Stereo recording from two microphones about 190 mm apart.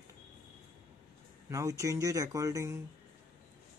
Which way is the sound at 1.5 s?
15° right (ahead or behind).